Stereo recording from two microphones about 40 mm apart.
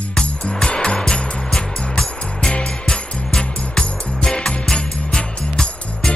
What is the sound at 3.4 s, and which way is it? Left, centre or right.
Music, centre.